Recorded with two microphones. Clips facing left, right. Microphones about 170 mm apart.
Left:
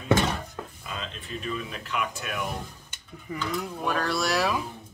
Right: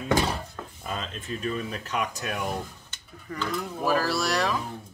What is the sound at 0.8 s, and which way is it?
Speech, 45° right (ahead or behind).